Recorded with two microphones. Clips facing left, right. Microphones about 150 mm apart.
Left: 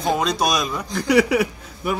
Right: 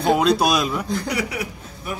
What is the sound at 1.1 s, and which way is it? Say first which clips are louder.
Speech: left 9 dB; 75° left (ahead or behind).